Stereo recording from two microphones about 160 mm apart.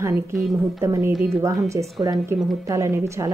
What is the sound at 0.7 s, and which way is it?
Speech, 20° right (ahead or behind).